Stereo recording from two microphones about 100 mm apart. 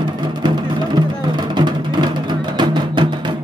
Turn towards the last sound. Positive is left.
turn(degrees=-50)  # may be behind; listen again after turning